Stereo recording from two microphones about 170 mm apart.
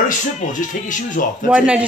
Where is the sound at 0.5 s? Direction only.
50° left (ahead or behind).